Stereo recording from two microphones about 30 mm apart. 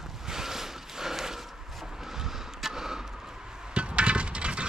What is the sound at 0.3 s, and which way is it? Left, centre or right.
Snort, centre.